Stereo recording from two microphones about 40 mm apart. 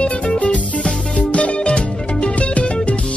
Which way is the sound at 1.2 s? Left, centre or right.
Left.